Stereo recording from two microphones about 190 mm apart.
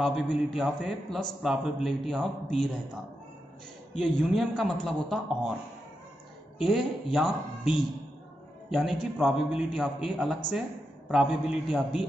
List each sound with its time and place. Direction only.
0.0 s a man's voice: centre (ahead or behind)
4.0 s a man's voice: 5° left (ahead or behind)
6.6 s a man's voice: centre (ahead or behind)